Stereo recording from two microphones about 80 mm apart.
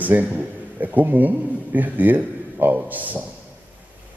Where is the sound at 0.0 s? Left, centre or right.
Right.